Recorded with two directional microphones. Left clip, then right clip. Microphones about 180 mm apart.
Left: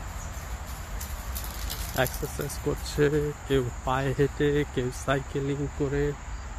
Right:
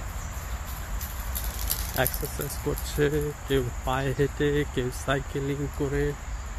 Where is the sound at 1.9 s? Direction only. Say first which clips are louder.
Left 1 dB; 25° left (ahead or behind).